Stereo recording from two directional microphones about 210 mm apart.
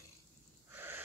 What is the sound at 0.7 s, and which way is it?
Wheeze, 10° right (ahead or behind).